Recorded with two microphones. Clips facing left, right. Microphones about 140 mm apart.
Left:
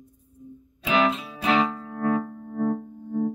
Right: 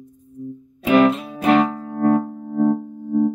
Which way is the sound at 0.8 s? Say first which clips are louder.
Right 8 dB; 55° right (ahead or behind).